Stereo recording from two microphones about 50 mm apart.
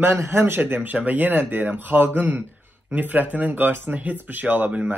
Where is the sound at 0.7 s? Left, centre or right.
Right.